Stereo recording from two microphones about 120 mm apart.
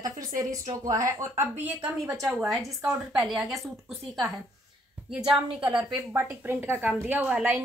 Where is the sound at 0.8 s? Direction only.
25° right (ahead or behind).